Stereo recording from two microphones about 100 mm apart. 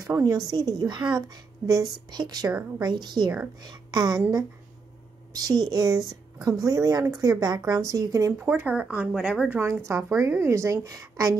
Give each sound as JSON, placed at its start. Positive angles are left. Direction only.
{"t": 0.0, "sound": "speech", "side_deg": -35}
{"t": 5.3, "sound": "speech", "side_deg": -40}
{"t": 8.3, "sound": "a woman's voice", "side_deg": -20}
{"t": 9.6, "sound": "a woman's voice", "side_deg": -25}